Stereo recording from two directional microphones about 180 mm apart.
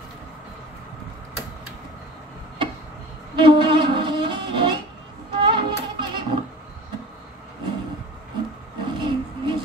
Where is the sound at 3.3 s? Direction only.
25° right (ahead or behind).